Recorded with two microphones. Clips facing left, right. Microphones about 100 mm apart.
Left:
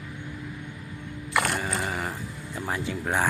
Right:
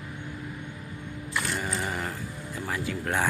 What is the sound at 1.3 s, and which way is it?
Mechanisms, 60° left (ahead or behind).